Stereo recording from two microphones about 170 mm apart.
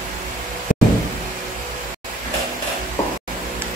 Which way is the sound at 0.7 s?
50° left (ahead or behind).